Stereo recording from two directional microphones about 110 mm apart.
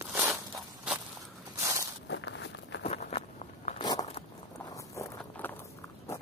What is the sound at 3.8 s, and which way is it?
Zipper, 35° left (ahead or behind).